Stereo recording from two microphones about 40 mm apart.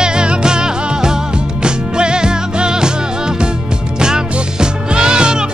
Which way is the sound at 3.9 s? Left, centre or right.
Centre.